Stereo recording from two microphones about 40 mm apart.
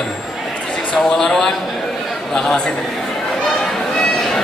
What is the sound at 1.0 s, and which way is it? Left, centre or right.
A man's voice, centre.